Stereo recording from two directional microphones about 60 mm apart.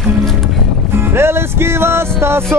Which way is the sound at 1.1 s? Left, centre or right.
Right.